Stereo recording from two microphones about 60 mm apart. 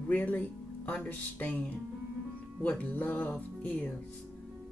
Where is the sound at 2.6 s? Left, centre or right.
Left.